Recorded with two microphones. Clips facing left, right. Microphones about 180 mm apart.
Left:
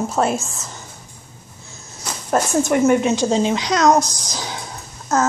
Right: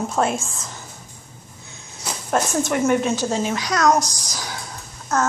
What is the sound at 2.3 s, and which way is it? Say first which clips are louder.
Speech: left 4 dB; 5° left (ahead or behind).